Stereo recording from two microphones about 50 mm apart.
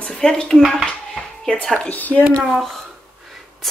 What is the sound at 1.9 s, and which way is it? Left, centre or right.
Speech, left.